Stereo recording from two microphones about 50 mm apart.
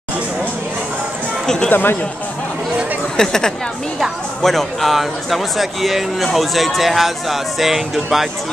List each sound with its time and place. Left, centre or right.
1.7 s speech: left
3.2 s speech: centre